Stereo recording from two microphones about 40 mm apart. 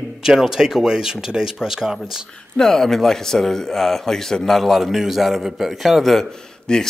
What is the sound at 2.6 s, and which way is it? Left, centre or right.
A man's voice, centre.